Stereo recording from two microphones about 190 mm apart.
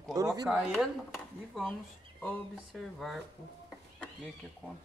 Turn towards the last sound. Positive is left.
turn(degrees=0)  # may be behind; listen again after turning